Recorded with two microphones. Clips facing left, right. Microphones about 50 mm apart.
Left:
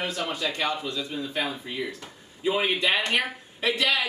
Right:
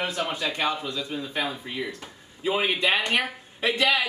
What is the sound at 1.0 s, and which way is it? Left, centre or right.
Speech, centre.